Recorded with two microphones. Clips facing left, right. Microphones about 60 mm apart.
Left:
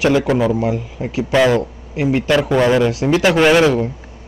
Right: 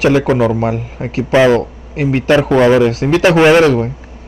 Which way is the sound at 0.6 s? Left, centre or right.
Right.